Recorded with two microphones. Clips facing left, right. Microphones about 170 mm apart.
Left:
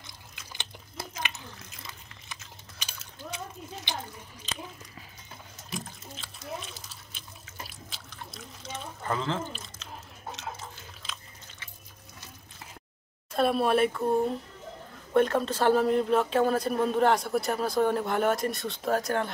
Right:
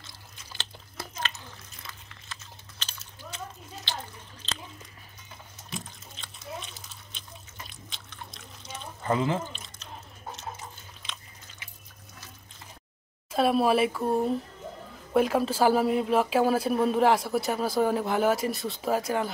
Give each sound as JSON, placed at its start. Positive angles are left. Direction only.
{"t": 0.0, "sound": "a sound", "side_deg": 15}
{"t": 2.3, "sound": "a sound", "side_deg": 15}
{"t": 5.7, "sound": "water", "side_deg": 0}
{"t": 9.0, "sound": "speech", "side_deg": -15}
{"t": 13.3, "sound": "speech", "side_deg": 0}
{"t": 15.1, "sound": "speech", "side_deg": -5}